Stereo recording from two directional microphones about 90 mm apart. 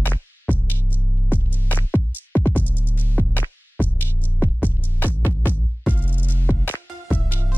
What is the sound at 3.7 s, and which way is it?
Music, 20° left (ahead or behind).